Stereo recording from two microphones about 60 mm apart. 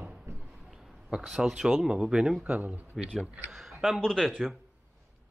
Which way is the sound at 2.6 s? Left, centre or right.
Right.